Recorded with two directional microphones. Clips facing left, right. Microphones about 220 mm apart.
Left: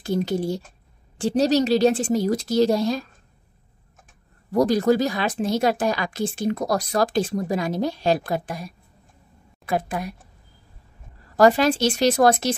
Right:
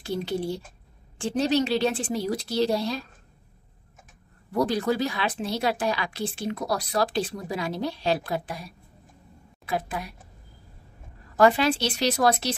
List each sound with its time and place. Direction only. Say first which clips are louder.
0.0 s speech: left 5 dB; 45° left (ahead or behind)
4.5 s speech: left 6 dB; 40° left (ahead or behind)
11.3 s speech: left 3 dB; 40° left (ahead or behind)